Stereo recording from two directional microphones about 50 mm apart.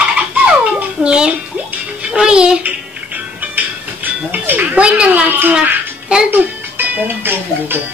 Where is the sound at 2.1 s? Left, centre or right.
Centre.